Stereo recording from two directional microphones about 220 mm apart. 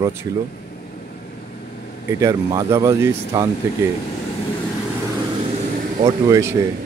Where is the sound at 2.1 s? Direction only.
15° right (ahead or behind).